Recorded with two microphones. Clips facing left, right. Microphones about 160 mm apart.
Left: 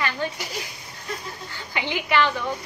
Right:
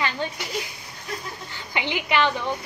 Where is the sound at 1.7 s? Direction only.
20° right (ahead or behind).